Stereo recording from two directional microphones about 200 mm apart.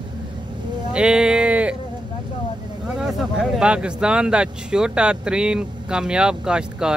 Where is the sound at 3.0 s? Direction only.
5° right (ahead or behind).